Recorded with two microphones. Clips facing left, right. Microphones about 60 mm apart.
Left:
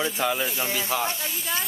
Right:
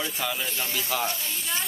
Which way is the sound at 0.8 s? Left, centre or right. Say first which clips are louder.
Left 1 dB; left.